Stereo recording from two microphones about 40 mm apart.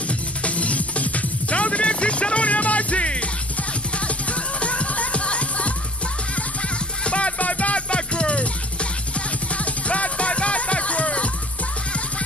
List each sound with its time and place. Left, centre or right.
0.4 s music: left
4.3 s music: left
7.1 s music: left
9.8 s music: left